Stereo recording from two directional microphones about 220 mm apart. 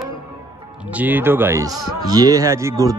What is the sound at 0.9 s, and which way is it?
A man's voice, 5° right (ahead or behind).